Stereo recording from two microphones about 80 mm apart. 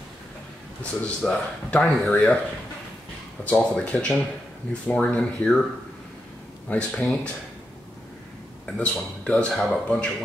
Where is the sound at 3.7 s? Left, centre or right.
Centre.